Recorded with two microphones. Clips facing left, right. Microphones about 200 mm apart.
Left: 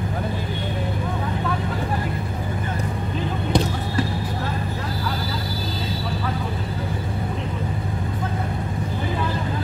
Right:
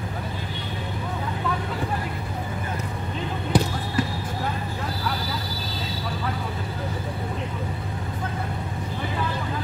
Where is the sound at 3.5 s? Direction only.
5° right (ahead or behind).